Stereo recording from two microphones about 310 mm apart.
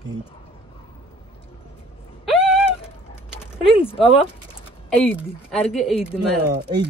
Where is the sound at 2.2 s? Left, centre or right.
Centre.